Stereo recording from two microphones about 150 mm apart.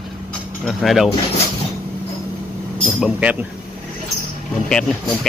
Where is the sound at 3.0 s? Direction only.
10° right (ahead or behind).